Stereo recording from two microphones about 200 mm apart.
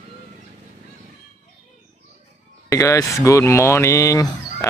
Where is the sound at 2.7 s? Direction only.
15° left (ahead or behind).